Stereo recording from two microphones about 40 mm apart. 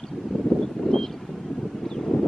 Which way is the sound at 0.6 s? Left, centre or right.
Centre.